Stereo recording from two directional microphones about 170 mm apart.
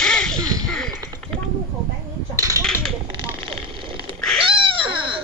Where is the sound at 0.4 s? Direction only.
20° right (ahead or behind).